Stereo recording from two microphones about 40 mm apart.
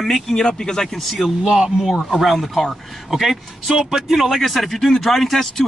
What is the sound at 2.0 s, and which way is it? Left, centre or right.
Speech, centre.